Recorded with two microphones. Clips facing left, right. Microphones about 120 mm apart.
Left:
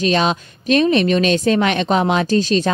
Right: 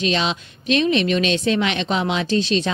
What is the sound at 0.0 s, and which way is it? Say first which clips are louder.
Speech: left 5 dB; 45° left (ahead or behind).